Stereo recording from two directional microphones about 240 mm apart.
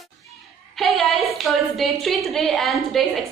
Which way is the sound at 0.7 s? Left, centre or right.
Centre.